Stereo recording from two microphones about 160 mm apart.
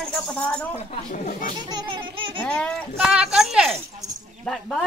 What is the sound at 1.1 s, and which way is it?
Speech, 60° left (ahead or behind).